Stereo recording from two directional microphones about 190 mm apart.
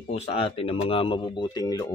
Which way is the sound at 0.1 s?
35° left (ahead or behind).